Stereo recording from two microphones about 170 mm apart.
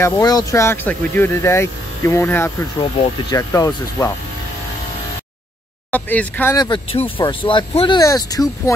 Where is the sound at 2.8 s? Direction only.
25° left (ahead or behind).